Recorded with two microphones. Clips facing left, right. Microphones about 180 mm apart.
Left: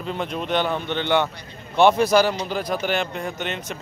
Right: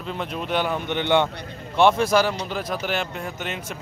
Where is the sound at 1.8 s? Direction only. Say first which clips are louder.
Left 2 dB; centre (ahead or behind).